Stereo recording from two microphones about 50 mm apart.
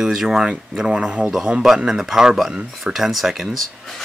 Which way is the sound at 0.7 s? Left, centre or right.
Centre.